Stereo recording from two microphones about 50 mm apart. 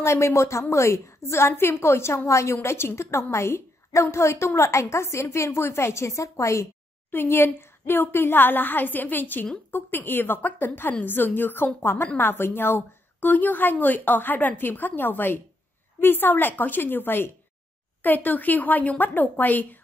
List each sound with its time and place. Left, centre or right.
0.0 s a woman's voice: left
7.1 s a woman's voice: left